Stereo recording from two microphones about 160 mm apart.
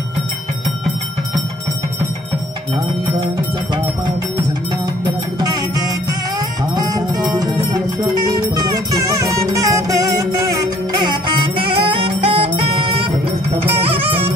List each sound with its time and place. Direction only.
5.0 s music: 25° right (ahead or behind)